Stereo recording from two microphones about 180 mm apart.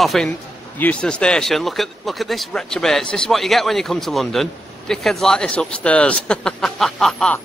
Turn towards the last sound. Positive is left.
turn(degrees=5)  # may be behind; listen again after turning